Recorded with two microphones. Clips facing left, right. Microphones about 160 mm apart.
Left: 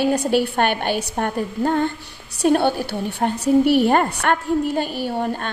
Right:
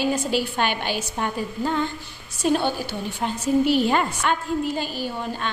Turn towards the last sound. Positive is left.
turn(degrees=55)  # may be behind; listen again after turning